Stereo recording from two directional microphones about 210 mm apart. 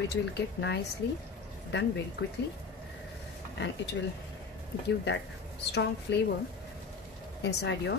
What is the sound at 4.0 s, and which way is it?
Speech, 65° left (ahead or behind).